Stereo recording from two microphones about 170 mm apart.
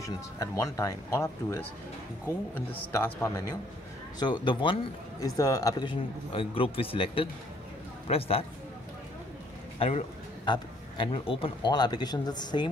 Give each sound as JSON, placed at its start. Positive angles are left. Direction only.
{"t": 0.0, "sound": "speech", "side_deg": 20}
{"t": 4.2, "sound": "a man's voice", "side_deg": 25}
{"t": 9.8, "sound": "a man's voice", "side_deg": 35}